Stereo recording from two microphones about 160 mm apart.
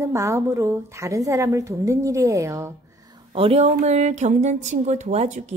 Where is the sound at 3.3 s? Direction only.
35° right (ahead or behind).